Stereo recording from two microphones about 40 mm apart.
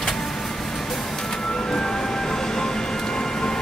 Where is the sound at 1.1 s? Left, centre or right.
Centre.